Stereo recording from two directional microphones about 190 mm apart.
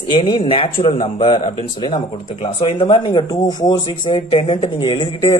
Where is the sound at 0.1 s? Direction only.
25° left (ahead or behind).